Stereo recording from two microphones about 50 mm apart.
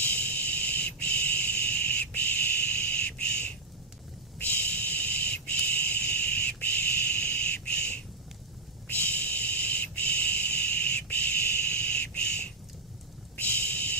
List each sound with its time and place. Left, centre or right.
0.0 s owl: left
6.6 s bird: left
8.8 s owl: left
11.8 s bird: left
13.4 s a sound: left